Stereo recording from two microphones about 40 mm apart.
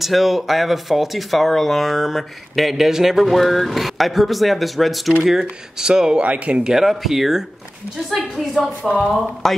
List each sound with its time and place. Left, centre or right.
0.0 s speech: centre
3.3 s speech: centre
6.2 s speech: right
6.7 s a woman's voice: centre
9.4 s speech: centre